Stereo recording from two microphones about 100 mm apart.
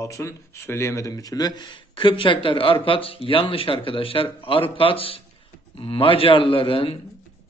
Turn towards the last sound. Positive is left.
turn(degrees=65)  # may be behind; listen again after turning